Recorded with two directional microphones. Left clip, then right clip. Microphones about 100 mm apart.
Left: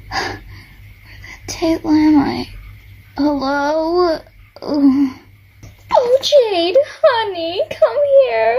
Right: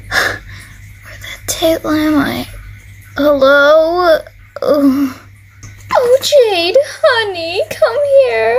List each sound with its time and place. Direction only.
0.1 s dog: 65° right (ahead or behind)
1.5 s child singing: 60° right (ahead or behind)
5.9 s speech: 15° right (ahead or behind)